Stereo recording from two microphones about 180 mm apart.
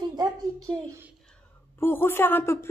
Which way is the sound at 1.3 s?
10° left (ahead or behind).